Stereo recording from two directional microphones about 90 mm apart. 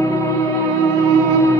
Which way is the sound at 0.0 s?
35° left (ahead or behind).